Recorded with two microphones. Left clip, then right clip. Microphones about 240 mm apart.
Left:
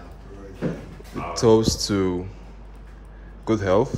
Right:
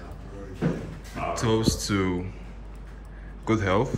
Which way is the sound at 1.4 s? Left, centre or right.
Left.